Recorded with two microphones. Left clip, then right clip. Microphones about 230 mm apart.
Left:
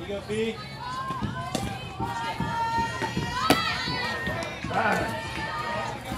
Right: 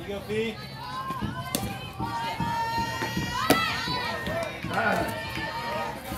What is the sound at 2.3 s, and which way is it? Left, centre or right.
Run, right.